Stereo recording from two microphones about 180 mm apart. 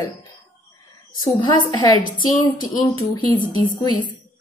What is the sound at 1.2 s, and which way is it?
Speech, 25° left (ahead or behind).